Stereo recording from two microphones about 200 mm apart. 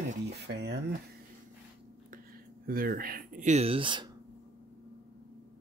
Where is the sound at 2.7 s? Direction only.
45° right (ahead or behind); by 4.1 s 25° right (ahead or behind).